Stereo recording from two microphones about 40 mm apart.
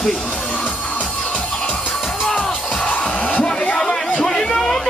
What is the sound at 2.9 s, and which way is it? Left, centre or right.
Music, left.